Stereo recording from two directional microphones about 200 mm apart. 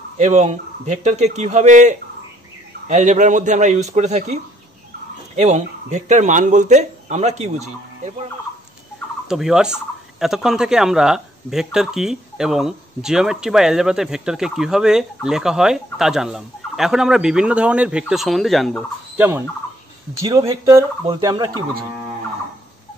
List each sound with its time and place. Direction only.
0.2 s a man's voice: 35° right (ahead or behind)
9.3 s speech: 5° right (ahead or behind)
19.1 s a sound: 10° right (ahead or behind)
20.2 s speech: 15° right (ahead or behind)